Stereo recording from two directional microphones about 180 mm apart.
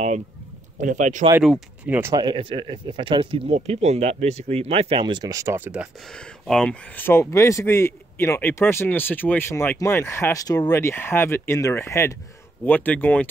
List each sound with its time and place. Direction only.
0.7 s speech: 45° right (ahead or behind)
1.9 s speech: 10° right (ahead or behind)
2.1 s speech: 25° right (ahead or behind); by 13.3 s 10° left (ahead or behind)